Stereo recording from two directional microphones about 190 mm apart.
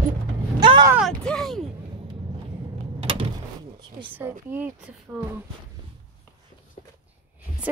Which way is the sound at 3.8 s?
25° right (ahead or behind).